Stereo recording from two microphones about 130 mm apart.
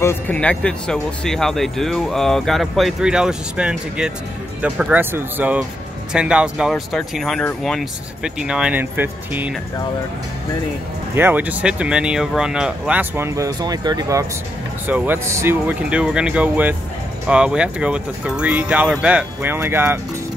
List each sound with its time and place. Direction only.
0.0 s speech: 20° left (ahead or behind)
0.4 s speech: 10° left (ahead or behind); by 9.5 s 15° right (ahead or behind)
11.1 s speech: 15° right (ahead or behind)
14.9 s speech: 15° right (ahead or behind)